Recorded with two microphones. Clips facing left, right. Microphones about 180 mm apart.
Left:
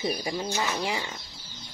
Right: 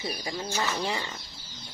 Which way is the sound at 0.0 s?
20° left (ahead or behind).